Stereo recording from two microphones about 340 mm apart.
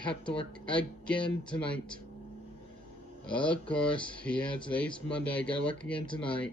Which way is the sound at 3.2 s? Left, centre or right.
Centre.